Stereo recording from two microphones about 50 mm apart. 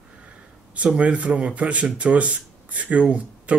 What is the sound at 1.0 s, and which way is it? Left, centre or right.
Speech, right.